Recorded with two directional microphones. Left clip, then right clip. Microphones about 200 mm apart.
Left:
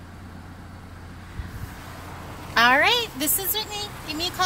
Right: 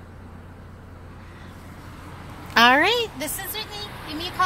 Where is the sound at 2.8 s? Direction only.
30° right (ahead or behind).